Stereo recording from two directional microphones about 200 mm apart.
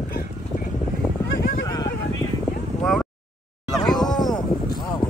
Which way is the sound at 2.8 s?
Centre (ahead or behind).